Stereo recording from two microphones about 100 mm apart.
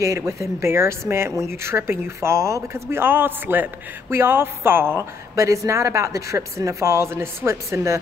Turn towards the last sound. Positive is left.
turn(degrees=-30)  # may be behind; listen again after turning